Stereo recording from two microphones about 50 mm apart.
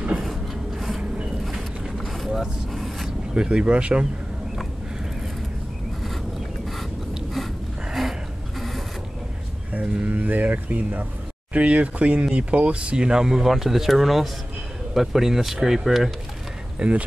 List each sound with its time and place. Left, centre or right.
0.1 s a sound: centre
1.4 s vehicle: centre
3.3 s speech: centre
7.9 s a sound: centre
10.1 s speech: right; by 16.1 s centre
16.7 s speech: right